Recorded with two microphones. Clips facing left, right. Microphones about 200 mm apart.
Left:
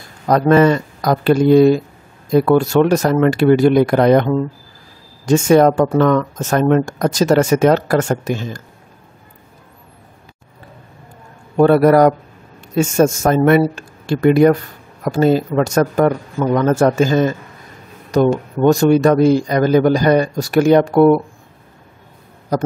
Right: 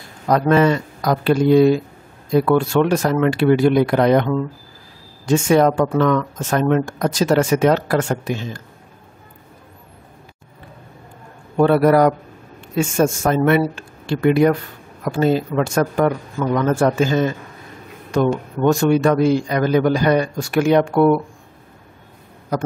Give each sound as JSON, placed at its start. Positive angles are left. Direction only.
{"t": 0.3, "sound": "speech", "side_deg": 45}
{"t": 11.5, "sound": "a man's voice", "side_deg": 45}
{"t": 22.5, "sound": "a man's voice", "side_deg": 40}